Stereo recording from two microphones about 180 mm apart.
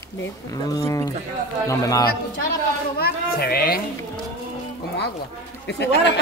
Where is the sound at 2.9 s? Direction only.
60° left (ahead or behind).